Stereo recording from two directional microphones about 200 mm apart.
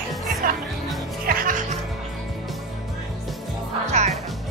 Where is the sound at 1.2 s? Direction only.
45° right (ahead or behind).